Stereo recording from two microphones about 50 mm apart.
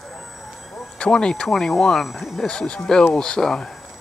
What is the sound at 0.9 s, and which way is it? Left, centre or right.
Speech, centre.